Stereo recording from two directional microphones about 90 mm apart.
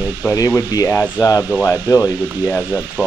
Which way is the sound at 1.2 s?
35° left (ahead or behind).